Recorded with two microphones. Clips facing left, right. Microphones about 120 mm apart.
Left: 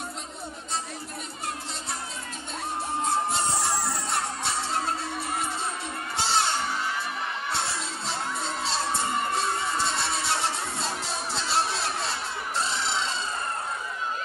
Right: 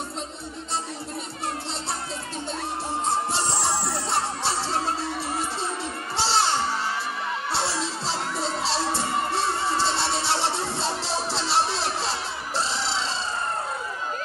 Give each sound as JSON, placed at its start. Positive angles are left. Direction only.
{"t": 3.3, "sound": "music", "side_deg": -30}
{"t": 3.7, "sound": "music", "side_deg": 0}
{"t": 4.1, "sound": "music", "side_deg": -30}
{"t": 6.1, "sound": "crowd", "side_deg": -30}
{"t": 7.5, "sound": "children shouting", "side_deg": -30}
{"t": 8.6, "sound": "crowd", "side_deg": -30}